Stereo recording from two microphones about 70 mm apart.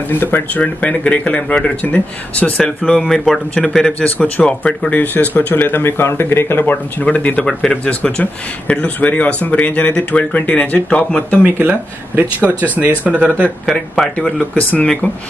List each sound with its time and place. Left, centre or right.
0.1 s speech: left
3.3 s speech: centre
4.0 s speech: left
11.4 s speech: right
14.1 s speech: centre